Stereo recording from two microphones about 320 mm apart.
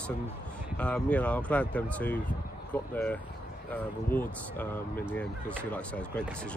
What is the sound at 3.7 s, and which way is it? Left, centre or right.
Speech, centre.